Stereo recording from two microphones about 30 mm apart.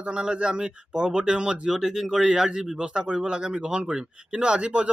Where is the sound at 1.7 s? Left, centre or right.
Centre.